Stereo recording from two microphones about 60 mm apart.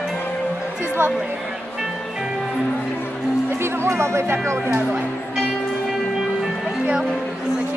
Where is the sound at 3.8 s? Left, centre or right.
Right.